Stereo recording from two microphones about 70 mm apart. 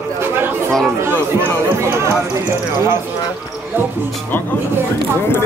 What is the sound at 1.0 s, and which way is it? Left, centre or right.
Speech, right.